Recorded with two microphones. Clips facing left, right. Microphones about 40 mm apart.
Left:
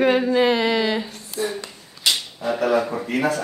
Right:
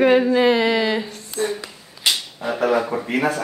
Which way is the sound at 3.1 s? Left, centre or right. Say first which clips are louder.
Right 1 dB; right.